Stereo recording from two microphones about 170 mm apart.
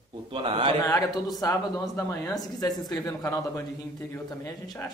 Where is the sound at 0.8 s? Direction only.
20° left (ahead or behind).